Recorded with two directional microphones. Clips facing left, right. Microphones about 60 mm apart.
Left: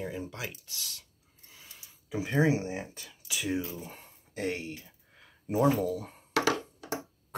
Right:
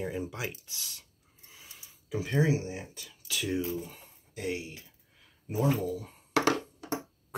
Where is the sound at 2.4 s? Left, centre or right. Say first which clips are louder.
Left 2 dB; left.